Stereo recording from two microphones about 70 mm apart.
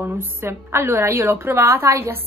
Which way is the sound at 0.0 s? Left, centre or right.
Right.